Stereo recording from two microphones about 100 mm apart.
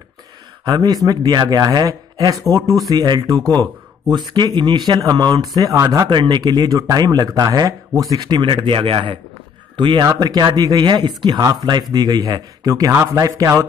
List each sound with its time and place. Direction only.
0.7 s speech: 40° right (ahead or behind)
4.1 s speech: 45° right (ahead or behind)
6.0 s a man's voice: 50° right (ahead or behind)
11.2 s speech: 40° right (ahead or behind)